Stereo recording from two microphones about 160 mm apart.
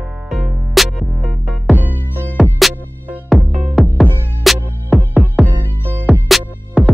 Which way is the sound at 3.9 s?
10° left (ahead or behind).